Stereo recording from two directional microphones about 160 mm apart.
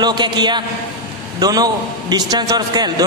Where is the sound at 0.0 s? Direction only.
25° right (ahead or behind).